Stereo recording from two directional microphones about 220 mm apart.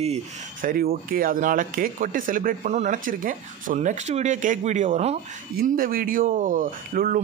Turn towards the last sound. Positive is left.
turn(degrees=-40)  # may be behind; listen again after turning